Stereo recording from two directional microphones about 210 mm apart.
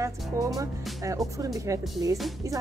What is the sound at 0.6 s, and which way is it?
Speech, 15° right (ahead or behind).